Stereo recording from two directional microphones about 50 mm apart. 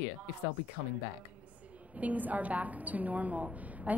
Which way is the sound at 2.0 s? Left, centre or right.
Right.